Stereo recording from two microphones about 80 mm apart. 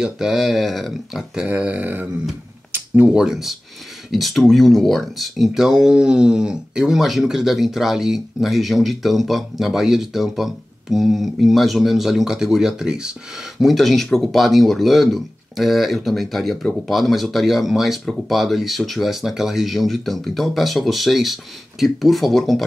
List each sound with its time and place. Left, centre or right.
0.0 s speech: centre
1.6 s mantra: centre
3.2 s speech: centre